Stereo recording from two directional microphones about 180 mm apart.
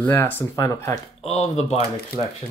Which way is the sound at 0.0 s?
10° left (ahead or behind).